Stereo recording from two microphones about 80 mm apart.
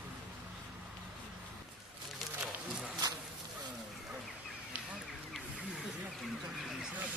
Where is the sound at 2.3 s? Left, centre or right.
Centre.